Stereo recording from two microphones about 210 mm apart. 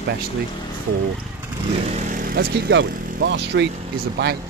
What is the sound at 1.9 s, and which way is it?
Speech, 40° right (ahead or behind).